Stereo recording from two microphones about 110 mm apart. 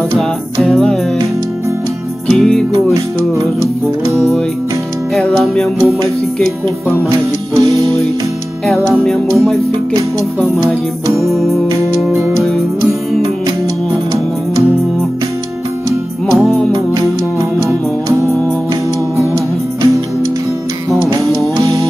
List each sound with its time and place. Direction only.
0.6 s music: 5° left (ahead or behind)
2.2 s music: 5° left (ahead or behind)
7.1 s music: 35° right (ahead or behind)
8.9 s music: 5° left (ahead or behind)
16.3 s music: centre (ahead or behind)
16.7 s music: 35° right (ahead or behind)
21.5 s music: 30° right (ahead or behind)